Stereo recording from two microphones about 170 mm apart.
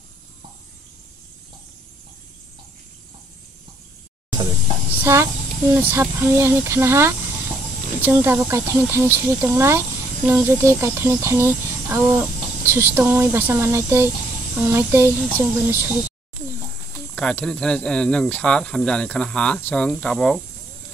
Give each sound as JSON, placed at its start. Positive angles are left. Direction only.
{"t": 5.0, "sound": "speech", "side_deg": -15}
{"t": 17.1, "sound": "speech", "side_deg": 5}